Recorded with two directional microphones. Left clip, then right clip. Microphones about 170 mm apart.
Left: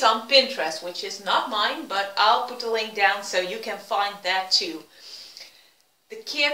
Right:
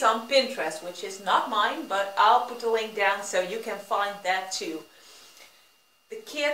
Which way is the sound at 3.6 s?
5° left (ahead or behind).